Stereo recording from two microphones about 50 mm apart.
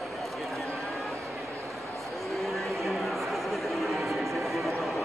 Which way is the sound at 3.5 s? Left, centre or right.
Centre.